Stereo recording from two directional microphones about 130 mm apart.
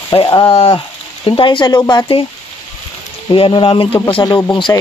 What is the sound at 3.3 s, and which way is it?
Speech, 40° left (ahead or behind).